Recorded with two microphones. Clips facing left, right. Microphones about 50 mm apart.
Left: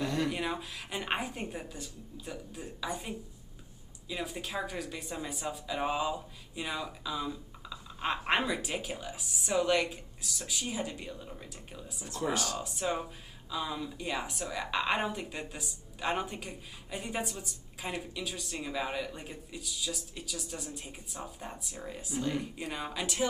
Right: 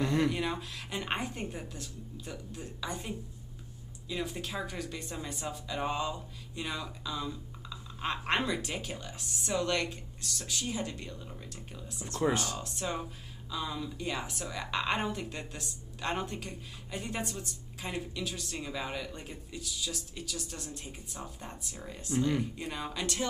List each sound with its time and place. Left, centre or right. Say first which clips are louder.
0.0 s a sound: right 3 dB; right
0.3 s speech: even; centre
12.2 s speech: right 3 dB; right
12.5 s speech: left 3 dB; centre